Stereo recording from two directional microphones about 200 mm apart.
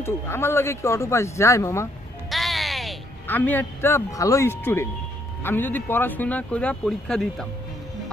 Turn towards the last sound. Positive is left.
turn(degrees=5)  # may be behind; listen again after turning